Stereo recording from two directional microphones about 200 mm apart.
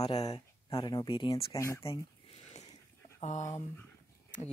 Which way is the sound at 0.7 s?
20° left (ahead or behind).